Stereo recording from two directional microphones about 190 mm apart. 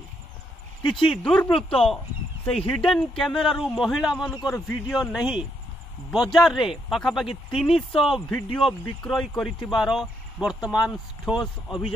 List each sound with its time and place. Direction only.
1.0 s speech: 5° left (ahead or behind)